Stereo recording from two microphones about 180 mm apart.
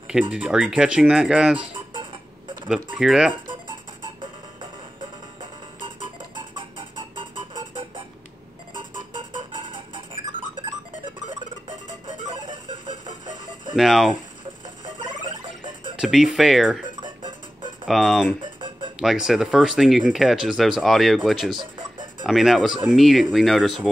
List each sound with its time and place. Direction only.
0.1 s speech: 5° right (ahead or behind)
2.7 s speech: 5° right (ahead or behind)
13.7 s speech: centre (ahead or behind)
15.2 s music: 30° right (ahead or behind)
16.0 s speech: 5° right (ahead or behind)
17.0 s music: 25° right (ahead or behind)
17.8 s speech: centre (ahead or behind)